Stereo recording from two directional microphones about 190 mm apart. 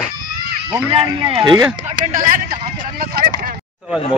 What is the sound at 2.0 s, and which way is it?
Speech, 45° right (ahead or behind).